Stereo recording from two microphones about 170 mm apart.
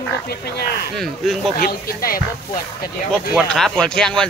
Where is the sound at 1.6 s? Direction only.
60° left (ahead or behind).